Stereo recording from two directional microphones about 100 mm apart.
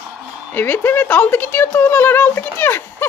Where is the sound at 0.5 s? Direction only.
20° left (ahead or behind).